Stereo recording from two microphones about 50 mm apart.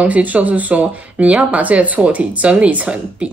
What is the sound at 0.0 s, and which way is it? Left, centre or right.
A woman's voice, right.